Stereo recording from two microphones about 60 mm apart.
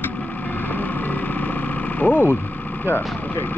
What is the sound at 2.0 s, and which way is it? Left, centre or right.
Speech, left.